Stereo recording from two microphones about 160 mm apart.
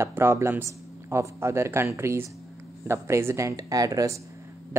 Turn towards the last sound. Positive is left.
turn(degrees=-15)  # may be behind; listen again after turning